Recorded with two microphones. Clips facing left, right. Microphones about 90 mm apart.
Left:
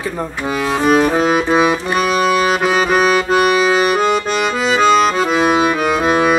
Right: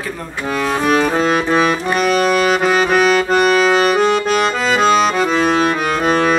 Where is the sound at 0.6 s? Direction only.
5° left (ahead or behind).